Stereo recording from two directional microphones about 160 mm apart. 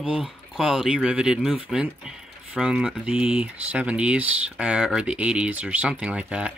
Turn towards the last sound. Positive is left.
turn(degrees=-5)  # may be behind; listen again after turning